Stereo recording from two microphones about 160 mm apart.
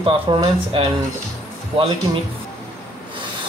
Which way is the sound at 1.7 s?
35° right (ahead or behind).